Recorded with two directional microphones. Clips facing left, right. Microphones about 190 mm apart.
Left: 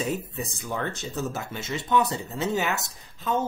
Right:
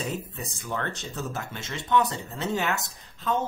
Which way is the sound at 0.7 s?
10° left (ahead or behind).